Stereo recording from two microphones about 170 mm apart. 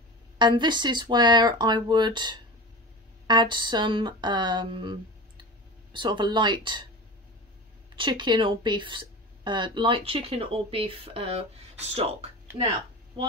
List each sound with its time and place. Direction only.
0.4 s speech: 25° right (ahead or behind)
5.9 s speech: 25° right (ahead or behind)
7.9 s speech: 30° right (ahead or behind)